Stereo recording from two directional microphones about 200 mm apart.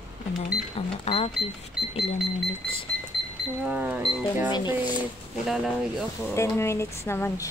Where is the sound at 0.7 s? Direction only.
30° left (ahead or behind).